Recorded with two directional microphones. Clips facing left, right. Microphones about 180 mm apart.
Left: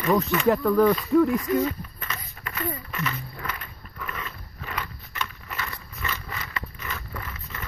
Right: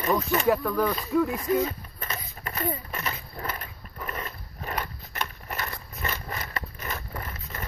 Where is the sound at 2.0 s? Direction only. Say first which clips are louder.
Right 1 dB; 35° right (ahead or behind).